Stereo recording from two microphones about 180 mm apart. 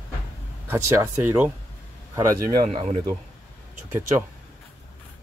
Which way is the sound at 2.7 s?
35° right (ahead or behind).